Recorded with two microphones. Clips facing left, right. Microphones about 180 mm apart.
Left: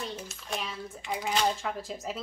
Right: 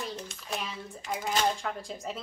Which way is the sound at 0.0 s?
5° left (ahead or behind).